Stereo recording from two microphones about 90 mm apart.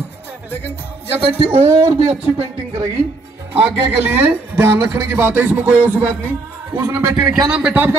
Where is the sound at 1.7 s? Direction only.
35° right (ahead or behind).